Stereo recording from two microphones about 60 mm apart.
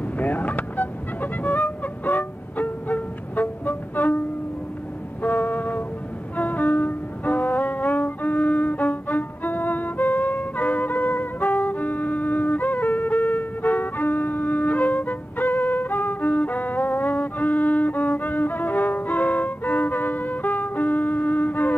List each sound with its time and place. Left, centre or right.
0.2 s music: left
5.2 s music: left